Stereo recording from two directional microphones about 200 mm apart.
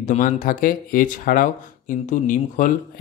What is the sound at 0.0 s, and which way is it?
Speech, 40° left (ahead or behind).